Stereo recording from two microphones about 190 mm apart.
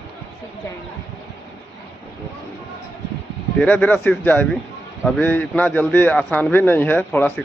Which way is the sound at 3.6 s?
5° left (ahead or behind).